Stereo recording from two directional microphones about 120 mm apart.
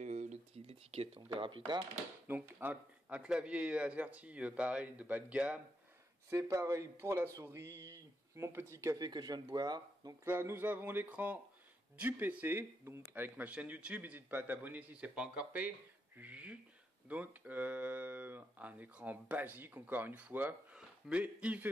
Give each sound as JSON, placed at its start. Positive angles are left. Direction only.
{"t": 0.0, "sound": "a sound", "side_deg": -80}
{"t": 2.2, "sound": "speech", "side_deg": -15}
{"t": 6.3, "sound": "speech", "side_deg": -25}
{"t": 10.2, "sound": "speech", "side_deg": -20}
{"t": 16.2, "sound": "a sound", "side_deg": -10}
{"t": 17.1, "sound": "speech", "side_deg": -15}